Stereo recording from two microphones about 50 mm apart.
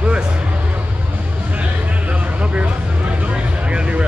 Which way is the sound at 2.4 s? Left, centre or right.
Right.